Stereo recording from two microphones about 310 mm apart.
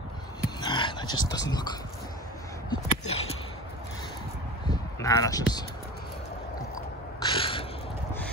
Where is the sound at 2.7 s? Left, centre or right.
Centre.